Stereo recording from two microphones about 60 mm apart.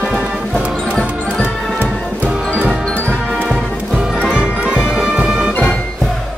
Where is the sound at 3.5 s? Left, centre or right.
Centre.